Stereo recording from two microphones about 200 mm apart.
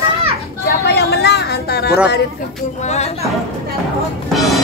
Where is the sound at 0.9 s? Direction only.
55° left (ahead or behind).